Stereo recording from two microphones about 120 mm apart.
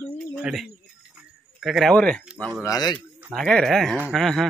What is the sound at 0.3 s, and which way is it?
Bird, 5° right (ahead or behind).